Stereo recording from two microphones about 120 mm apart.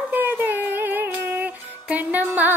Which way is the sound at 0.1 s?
15° right (ahead or behind).